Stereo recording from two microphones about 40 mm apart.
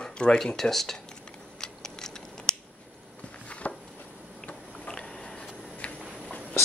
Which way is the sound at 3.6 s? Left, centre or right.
Left.